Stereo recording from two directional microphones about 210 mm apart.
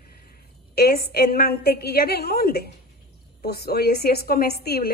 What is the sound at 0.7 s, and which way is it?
A woman's voice, 50° left (ahead or behind).